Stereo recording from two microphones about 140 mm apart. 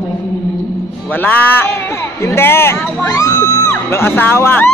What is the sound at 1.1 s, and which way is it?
Speech, 15° left (ahead or behind).